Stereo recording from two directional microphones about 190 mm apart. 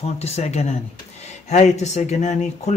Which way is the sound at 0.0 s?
35° left (ahead or behind).